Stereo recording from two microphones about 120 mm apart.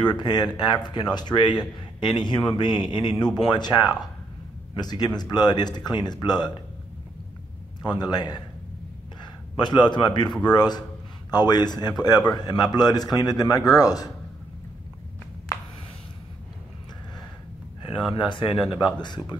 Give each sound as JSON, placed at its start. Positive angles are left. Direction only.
{"t": 0.0, "sound": "a man's voice", "side_deg": 40}
{"t": 7.8, "sound": "a man's voice", "side_deg": 35}
{"t": 17.9, "sound": "a man's voice", "side_deg": 45}